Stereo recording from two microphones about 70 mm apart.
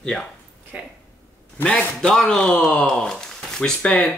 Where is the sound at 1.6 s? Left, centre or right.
Centre.